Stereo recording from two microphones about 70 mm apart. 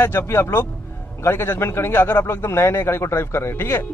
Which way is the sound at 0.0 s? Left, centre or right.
Left.